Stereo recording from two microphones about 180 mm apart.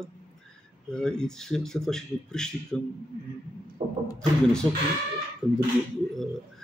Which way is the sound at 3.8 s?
30° right (ahead or behind).